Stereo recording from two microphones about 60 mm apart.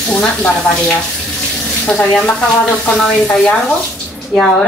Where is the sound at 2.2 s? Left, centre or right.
Centre.